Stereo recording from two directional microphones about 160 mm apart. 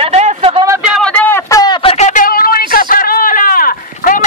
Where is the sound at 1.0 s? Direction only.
10° left (ahead or behind).